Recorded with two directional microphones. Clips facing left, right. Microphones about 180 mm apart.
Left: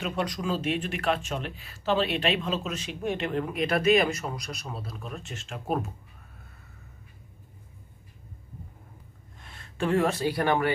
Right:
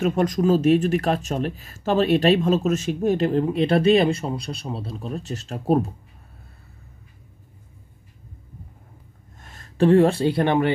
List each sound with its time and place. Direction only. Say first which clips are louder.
0.0 s speech: right 10 dB; 45° right (ahead or behind)
9.4 s speech: right 10 dB; 40° right (ahead or behind); by 10.7 s 25° right (ahead or behind)